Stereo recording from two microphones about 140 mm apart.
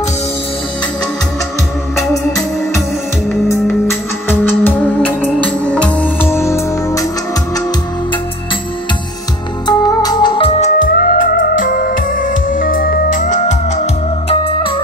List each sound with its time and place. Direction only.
2.0 s organ: 20° left (ahead or behind)
3.8 s music: 15° left (ahead or behind)
9.7 s music: 30° left (ahead or behind)
10.7 s music: 90° left; by 13.8 s 60° left (ahead or behind)